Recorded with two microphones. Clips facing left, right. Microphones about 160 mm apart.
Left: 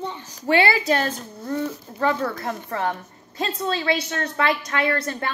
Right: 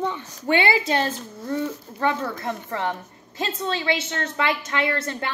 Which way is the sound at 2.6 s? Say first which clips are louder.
Left 1 dB; 20° right (ahead or behind).